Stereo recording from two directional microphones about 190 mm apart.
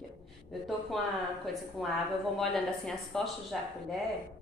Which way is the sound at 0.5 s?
Centre (ahead or behind).